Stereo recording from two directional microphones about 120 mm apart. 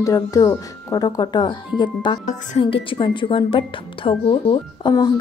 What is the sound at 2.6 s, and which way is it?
A woman's voice, 50° left (ahead or behind).